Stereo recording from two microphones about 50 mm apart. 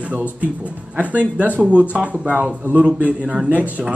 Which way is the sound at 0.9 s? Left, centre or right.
Right.